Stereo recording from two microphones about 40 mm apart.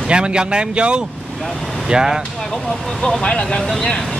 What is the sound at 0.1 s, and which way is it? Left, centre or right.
Speech, right.